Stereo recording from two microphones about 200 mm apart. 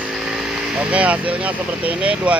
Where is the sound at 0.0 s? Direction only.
5° right (ahead or behind).